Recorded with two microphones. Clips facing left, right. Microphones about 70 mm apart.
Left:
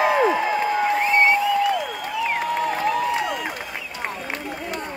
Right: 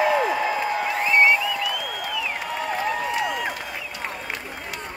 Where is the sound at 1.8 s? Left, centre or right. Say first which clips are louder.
Left 3 dB; left.